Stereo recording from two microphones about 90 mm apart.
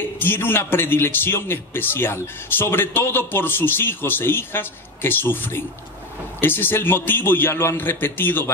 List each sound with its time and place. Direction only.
0.2 s a man's voice: 25° left (ahead or behind)